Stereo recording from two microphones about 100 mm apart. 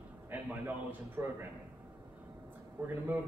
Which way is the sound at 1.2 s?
30° right (ahead or behind).